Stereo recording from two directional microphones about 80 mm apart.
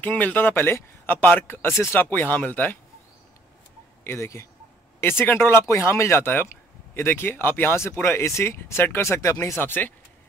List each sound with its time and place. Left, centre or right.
0.0 s speech: left
4.0 s speech: left